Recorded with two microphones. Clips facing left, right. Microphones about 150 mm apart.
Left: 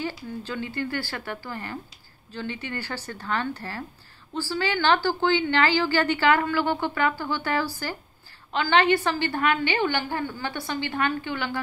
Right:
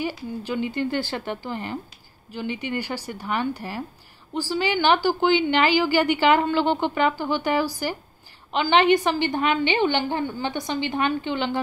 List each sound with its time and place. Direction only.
0.4 s a woman's voice: 15° right (ahead or behind)